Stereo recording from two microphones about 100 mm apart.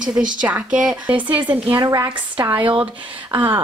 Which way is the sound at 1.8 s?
40° right (ahead or behind).